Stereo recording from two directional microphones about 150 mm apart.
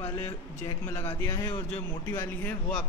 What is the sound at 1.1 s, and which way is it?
A man's voice, 20° left (ahead or behind).